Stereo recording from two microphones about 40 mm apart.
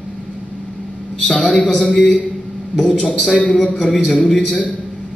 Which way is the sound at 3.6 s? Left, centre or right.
Left.